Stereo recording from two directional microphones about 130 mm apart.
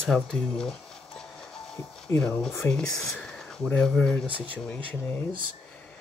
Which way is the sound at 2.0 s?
10° left (ahead or behind).